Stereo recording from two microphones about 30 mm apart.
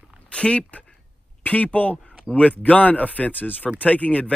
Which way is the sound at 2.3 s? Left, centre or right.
Right.